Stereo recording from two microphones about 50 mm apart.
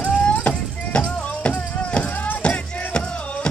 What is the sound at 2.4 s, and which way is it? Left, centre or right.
Music, left.